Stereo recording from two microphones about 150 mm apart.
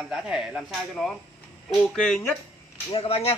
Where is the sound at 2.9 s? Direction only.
40° left (ahead or behind).